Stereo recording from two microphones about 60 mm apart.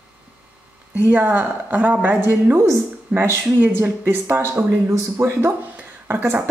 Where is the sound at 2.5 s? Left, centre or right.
Right.